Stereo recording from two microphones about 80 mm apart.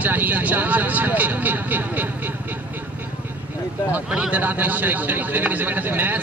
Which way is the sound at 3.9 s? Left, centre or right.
Centre.